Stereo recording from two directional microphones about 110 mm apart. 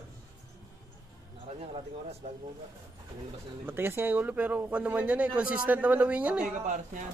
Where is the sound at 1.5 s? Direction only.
70° right (ahead or behind).